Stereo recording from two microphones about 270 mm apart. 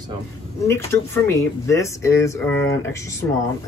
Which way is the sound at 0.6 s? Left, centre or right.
Centre.